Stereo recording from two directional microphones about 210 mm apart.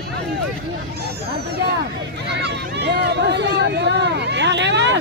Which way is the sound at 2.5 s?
55° right (ahead or behind).